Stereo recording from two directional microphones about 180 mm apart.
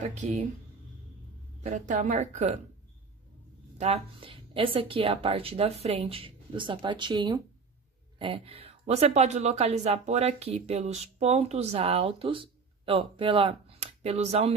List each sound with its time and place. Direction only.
0.0 s speech: 40° right (ahead or behind)
1.6 s speech: 40° right (ahead or behind)
3.8 s speech: 30° right (ahead or behind)